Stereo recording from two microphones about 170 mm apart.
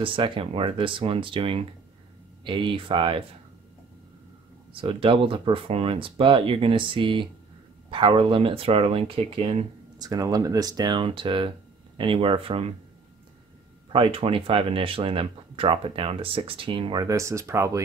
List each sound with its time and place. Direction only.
0.0 s speech: 30° right (ahead or behind)
4.7 s speech: 30° right (ahead or behind)
9.9 s speech: 20° right (ahead or behind)
13.9 s speech: 30° right (ahead or behind)